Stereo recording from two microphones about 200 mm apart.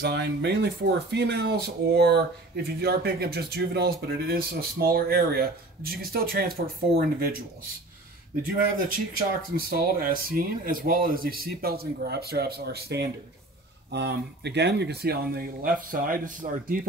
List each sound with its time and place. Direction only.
0.0 s speech: 55° right (ahead or behind)
8.7 s speech: 45° right (ahead or behind)